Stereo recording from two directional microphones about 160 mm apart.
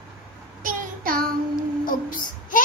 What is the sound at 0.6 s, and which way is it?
Child singing, 60° right (ahead or behind).